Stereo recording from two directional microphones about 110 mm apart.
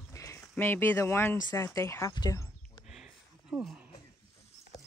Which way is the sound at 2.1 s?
40° left (ahead or behind).